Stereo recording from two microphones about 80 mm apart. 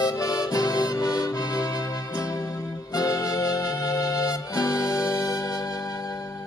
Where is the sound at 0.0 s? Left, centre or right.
Left.